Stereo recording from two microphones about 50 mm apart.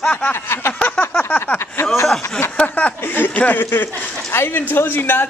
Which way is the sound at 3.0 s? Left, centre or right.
Left.